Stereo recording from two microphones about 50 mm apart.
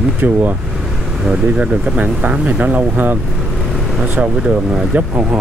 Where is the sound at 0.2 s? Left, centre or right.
Right.